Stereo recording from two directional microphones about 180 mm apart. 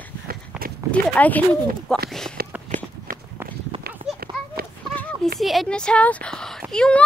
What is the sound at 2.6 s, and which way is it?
Walk, 40° right (ahead or behind).